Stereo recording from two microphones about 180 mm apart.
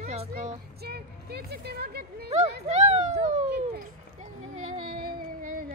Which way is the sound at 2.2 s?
35° right (ahead or behind).